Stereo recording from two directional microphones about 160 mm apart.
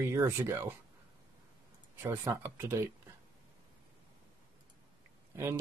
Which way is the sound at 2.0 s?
20° right (ahead or behind).